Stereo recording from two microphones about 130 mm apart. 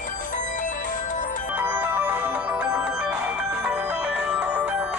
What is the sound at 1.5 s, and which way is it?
Music, 15° right (ahead or behind).